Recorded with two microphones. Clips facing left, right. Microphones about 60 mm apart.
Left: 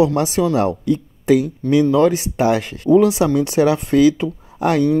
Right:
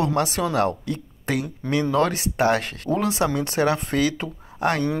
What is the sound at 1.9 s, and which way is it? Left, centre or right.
Speech, right.